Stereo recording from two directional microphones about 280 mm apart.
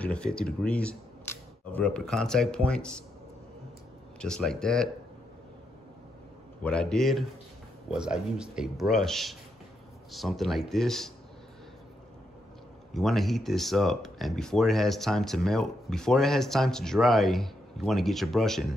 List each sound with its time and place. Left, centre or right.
0.0 s speech: centre
4.2 s speech: centre
6.6 s speech: centre
12.9 s speech: centre